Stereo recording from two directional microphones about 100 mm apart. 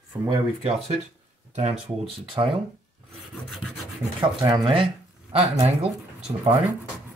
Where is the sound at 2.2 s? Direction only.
60° right (ahead or behind).